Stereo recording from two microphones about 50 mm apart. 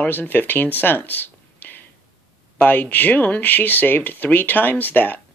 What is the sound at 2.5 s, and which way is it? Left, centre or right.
Speech, left.